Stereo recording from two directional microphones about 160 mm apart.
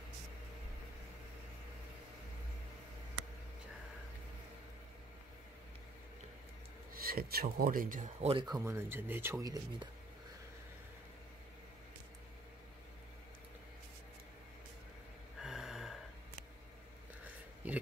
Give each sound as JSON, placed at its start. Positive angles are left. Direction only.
{"t": 6.9, "sound": "speech", "side_deg": -65}
{"t": 8.5, "sound": "speech", "side_deg": -15}
{"t": 15.4, "sound": "gasp", "side_deg": 0}
{"t": 17.6, "sound": "a sound", "side_deg": -10}